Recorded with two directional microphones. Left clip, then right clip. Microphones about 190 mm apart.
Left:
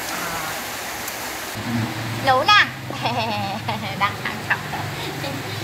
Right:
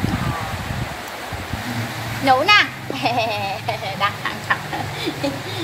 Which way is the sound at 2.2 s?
15° right (ahead or behind).